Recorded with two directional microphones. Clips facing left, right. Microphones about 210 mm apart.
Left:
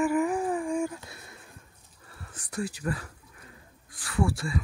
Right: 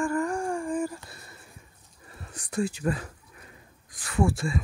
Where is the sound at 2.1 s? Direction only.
20° right (ahead or behind).